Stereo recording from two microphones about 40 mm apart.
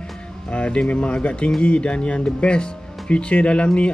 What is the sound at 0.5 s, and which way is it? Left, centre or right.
Speech, left.